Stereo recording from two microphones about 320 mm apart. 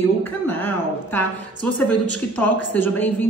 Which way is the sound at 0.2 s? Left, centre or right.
Centre.